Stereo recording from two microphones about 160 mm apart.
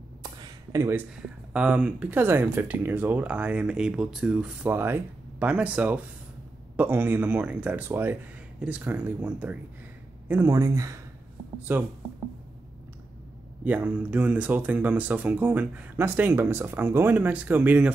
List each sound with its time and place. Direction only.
0.2 s a sound: 20° right (ahead or behind)
1.5 s speech: 5° right (ahead or behind)
13.7 s speech: 10° right (ahead or behind)